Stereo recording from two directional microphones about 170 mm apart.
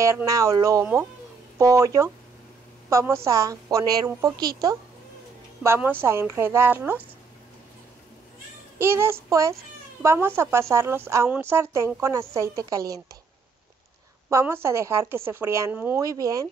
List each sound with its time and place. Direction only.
0.0 s a woman's voice: 20° right (ahead or behind)
5.6 s a woman's voice: 15° right (ahead or behind)
8.7 s a woman's voice: 15° right (ahead or behind)
14.3 s a woman's voice: 15° right (ahead or behind)